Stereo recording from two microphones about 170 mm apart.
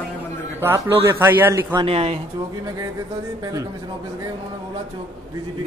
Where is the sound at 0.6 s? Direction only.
15° right (ahead or behind).